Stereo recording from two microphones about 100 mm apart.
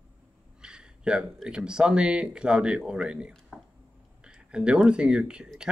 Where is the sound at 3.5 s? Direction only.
5° left (ahead or behind).